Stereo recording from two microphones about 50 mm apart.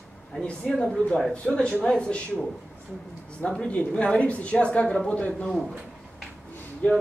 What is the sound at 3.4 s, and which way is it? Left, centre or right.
A woman's voice, left.